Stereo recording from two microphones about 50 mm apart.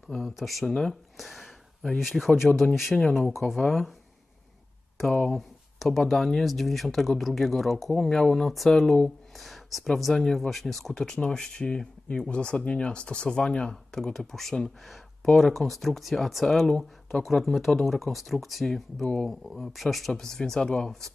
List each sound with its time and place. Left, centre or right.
0.1 s speech: centre
5.3 s speech: centre
11.1 s speech: centre